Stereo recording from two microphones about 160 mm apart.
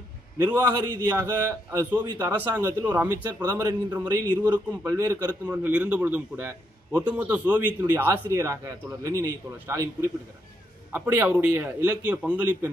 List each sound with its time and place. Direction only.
0.5 s a man's voice: 25° right (ahead or behind)
1.0 s a man's voice: 10° right (ahead or behind)
10.9 s a man's voice: 10° right (ahead or behind)